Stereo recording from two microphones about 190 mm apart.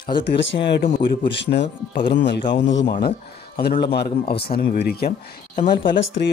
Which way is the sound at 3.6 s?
55° left (ahead or behind).